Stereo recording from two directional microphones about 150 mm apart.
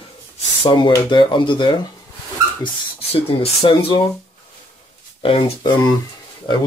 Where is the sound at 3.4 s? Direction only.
35° left (ahead or behind).